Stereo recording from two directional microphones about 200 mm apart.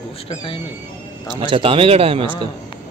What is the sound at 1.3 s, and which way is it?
A man's voice, 25° right (ahead or behind).